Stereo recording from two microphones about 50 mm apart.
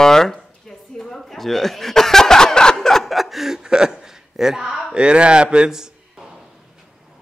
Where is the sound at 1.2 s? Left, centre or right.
Centre.